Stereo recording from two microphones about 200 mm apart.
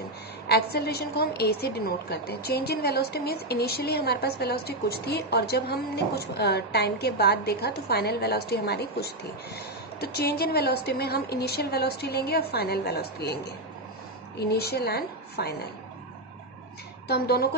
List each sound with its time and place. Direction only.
0.5 s a woman's voice: 55° left (ahead or behind)
14.4 s a woman's voice: 55° left (ahead or behind)
17.1 s a woman's voice: 50° left (ahead or behind)